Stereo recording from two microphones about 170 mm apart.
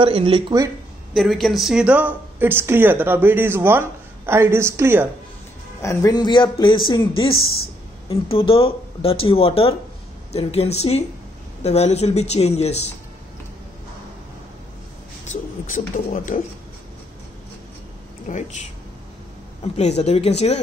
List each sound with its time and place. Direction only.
0.0 s speech: 30° right (ahead or behind)
1.1 s speech: centre (ahead or behind); by 5.0 s 15° right (ahead or behind)
5.8 s a man's voice: 20° left (ahead or behind); by 12.9 s 40° left (ahead or behind)
15.2 s speech: 50° left (ahead or behind)
18.3 s speech: 45° left (ahead or behind)
19.8 s speech: 40° left (ahead or behind)